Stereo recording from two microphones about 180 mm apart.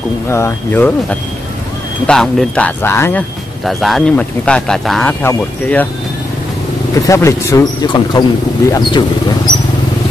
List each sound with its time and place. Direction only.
0.3 s speech: 10° left (ahead or behind)
2.0 s speech: 5° left (ahead or behind)
3.6 s speech: centre (ahead or behind)
7.1 s speech: 15° left (ahead or behind)